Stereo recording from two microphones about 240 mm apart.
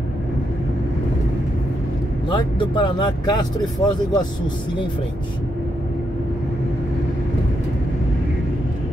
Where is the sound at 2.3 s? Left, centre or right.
Centre.